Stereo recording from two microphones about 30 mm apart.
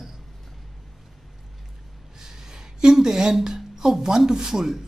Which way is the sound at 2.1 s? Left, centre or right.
Centre.